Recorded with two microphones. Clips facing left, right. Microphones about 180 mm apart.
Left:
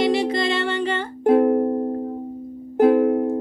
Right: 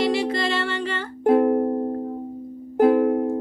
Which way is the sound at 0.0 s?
20° left (ahead or behind).